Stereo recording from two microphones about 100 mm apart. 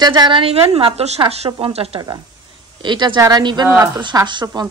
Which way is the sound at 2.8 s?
50° right (ahead or behind).